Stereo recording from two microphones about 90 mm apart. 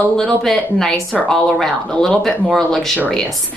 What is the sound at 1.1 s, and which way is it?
Speech, 15° left (ahead or behind).